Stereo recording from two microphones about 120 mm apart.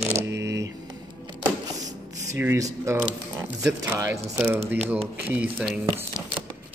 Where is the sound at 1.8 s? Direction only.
25° right (ahead or behind).